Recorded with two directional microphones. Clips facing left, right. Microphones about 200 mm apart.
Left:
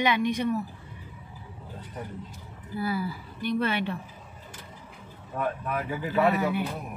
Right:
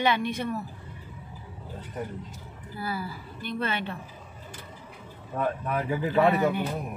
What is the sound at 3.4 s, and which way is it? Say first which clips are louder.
Music: left 4 dB; 15° left (ahead or behind).